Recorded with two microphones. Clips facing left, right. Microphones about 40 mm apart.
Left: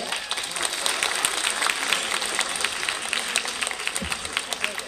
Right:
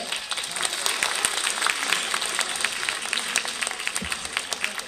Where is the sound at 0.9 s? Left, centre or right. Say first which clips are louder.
Left 1 dB; left.